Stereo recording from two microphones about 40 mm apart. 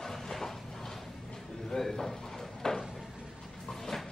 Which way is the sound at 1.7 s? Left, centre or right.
Centre.